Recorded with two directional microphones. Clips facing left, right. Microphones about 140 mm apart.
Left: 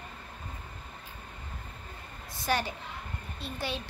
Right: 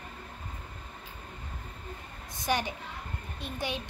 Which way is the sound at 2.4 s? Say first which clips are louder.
Even; 20° right (ahead or behind).